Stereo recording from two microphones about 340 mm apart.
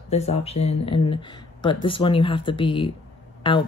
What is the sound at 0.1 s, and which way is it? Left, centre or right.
Speech, centre.